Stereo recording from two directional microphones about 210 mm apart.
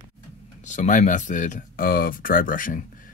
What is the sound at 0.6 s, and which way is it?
Speech, 35° left (ahead or behind).